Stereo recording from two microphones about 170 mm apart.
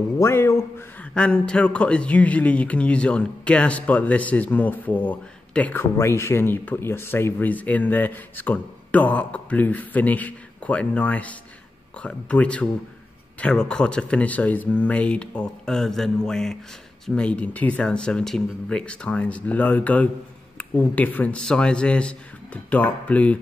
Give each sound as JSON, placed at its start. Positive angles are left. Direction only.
{"t": 0.2, "sound": "a man's voice", "side_deg": 15}